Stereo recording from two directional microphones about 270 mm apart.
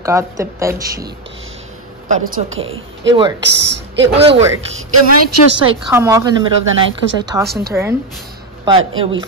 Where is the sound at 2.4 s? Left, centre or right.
Right.